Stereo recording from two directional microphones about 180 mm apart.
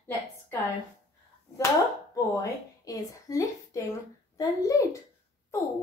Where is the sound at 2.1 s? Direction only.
20° left (ahead or behind).